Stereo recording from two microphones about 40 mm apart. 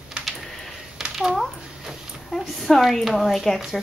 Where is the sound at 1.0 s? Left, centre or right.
Centre.